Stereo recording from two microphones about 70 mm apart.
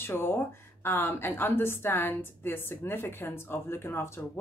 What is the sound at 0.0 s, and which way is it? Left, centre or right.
A woman's voice, left.